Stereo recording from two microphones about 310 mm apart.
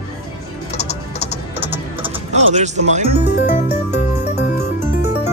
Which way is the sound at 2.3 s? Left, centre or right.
Right.